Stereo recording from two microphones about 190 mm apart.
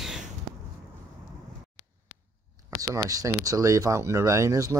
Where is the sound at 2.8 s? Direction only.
20° right (ahead or behind).